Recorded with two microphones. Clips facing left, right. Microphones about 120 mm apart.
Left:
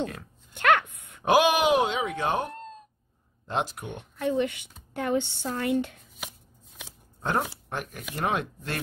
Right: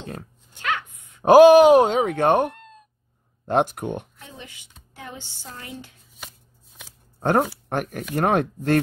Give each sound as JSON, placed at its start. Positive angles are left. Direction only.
{"t": 0.6, "sound": "a sound", "side_deg": 60}
{"t": 1.2, "sound": "speech", "side_deg": -40}
{"t": 4.2, "sound": "a woman's voice", "side_deg": 65}
{"t": 7.2, "sound": "speech", "side_deg": -45}